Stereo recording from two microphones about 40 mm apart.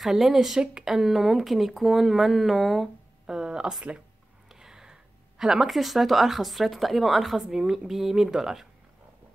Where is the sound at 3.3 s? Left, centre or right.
Centre.